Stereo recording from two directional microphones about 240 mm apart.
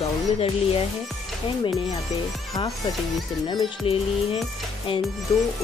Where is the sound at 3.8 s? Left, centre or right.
Left.